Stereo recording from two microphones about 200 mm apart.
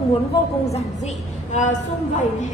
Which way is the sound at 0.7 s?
35° left (ahead or behind).